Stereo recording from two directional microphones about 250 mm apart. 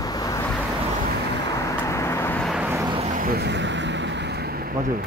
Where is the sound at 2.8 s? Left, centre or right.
Right.